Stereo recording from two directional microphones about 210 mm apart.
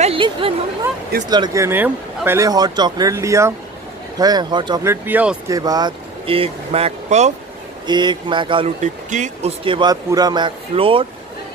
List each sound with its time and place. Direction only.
0.0 s chatter: 25° right (ahead or behind)
1.3 s speech: 15° right (ahead or behind)
5.5 s speech: 20° right (ahead or behind)
7.8 s speech: 20° right (ahead or behind)